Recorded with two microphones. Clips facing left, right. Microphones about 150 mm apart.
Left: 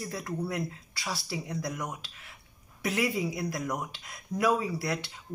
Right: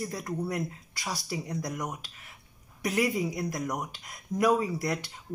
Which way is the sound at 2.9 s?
45° right (ahead or behind).